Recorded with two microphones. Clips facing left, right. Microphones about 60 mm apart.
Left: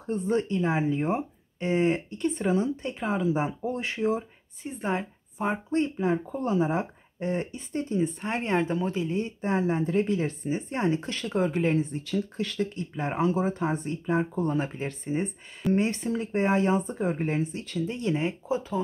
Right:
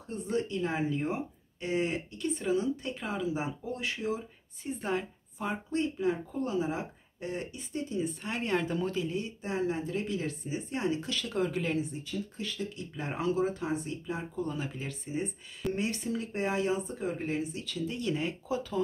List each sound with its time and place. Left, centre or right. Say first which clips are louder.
0.0 s speech: left 6 dB; left
0.7 s speech: left 5 dB; left
12.1 s speech: left 7 dB; left
12.5 s speech: left 7 dB; left